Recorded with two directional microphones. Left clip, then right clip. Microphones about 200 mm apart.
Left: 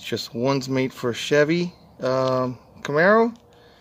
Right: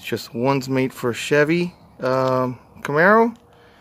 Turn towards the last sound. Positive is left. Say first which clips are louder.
# right 2 dB
turn(degrees=-10)  # may be behind; listen again after turning